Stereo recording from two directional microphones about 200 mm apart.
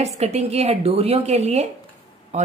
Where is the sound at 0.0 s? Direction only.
30° right (ahead or behind).